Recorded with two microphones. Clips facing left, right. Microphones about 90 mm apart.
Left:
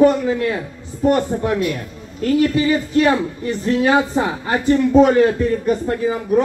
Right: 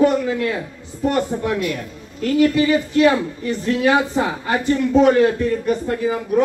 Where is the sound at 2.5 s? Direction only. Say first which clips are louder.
Even; 30° left (ahead or behind).